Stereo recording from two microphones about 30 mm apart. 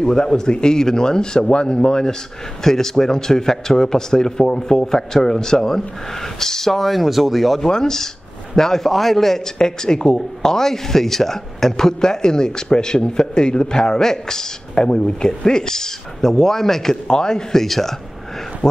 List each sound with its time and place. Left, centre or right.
0.0 s speech: left
2.6 s speech: centre
6.9 s speech: centre
7.6 s speech: left
9.6 s speech: left
14.8 s speech: left; by 16.9 s centre
16.9 s speech: left
17.6 s speech: centre